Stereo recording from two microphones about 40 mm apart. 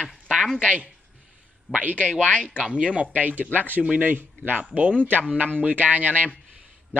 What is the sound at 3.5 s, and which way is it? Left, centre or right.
A man's voice, right.